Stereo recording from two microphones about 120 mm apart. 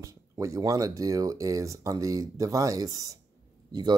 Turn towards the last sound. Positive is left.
turn(degrees=-35)  # may be behind; listen again after turning